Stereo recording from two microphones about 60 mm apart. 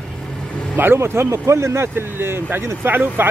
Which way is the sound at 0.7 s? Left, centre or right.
Right.